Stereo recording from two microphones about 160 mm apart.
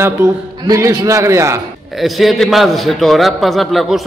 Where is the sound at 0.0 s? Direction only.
15° right (ahead or behind).